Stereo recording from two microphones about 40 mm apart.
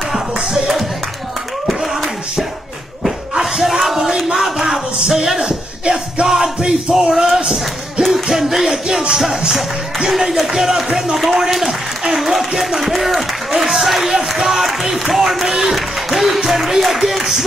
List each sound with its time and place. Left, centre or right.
1.7 s a sound: centre
4.3 s music: centre
5.1 s a sound: centre
5.4 s music: right
6.2 s music: centre
8.1 s music: centre
9.5 s speech: centre
11.3 s applause: centre
16.4 s a sound: centre